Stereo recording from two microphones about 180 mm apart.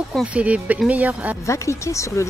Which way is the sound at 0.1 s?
5° right (ahead or behind).